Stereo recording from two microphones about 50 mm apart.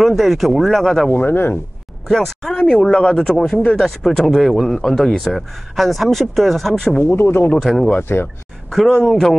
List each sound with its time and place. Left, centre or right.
0.0 s speech: centre
1.1 s speech: left
2.0 s speech: centre
5.8 s speech: centre
7.0 s speech: left
7.7 s speech: centre
8.0 s speech: left
8.6 s speech: centre